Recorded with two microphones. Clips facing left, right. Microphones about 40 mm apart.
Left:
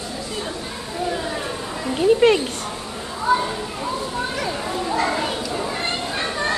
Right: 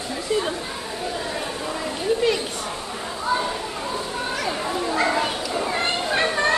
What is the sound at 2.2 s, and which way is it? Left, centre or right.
Speech, left.